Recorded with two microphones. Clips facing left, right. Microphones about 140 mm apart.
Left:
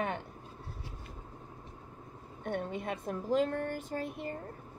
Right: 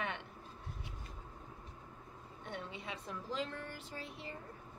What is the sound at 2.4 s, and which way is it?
A woman's voice, 50° left (ahead or behind).